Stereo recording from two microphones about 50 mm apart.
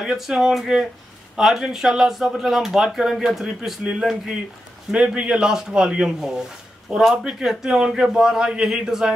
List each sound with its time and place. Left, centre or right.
0.0 s speech: centre
4.9 s speech: right